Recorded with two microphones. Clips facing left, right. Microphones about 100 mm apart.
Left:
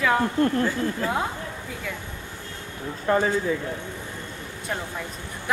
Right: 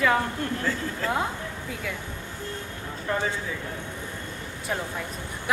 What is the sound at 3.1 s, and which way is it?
Speech, 45° left (ahead or behind).